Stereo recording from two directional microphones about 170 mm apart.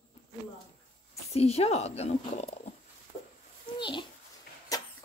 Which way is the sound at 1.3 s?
40° left (ahead or behind).